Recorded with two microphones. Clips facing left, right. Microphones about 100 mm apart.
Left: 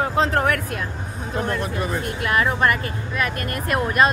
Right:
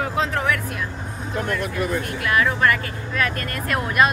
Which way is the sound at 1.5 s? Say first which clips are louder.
Right 3 dB; 25° left (ahead or behind).